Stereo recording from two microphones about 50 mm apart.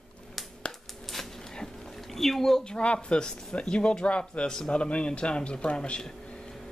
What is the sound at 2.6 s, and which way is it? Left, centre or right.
Speech, centre.